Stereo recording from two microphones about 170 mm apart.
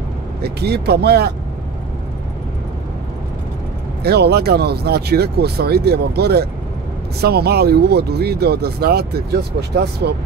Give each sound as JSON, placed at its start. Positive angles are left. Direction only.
{"t": 0.4, "sound": "speech", "side_deg": -70}
{"t": 4.0, "sound": "speech", "side_deg": -70}